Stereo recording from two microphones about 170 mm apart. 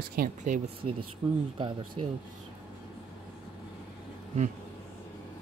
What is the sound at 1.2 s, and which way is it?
Speech, 30° right (ahead or behind).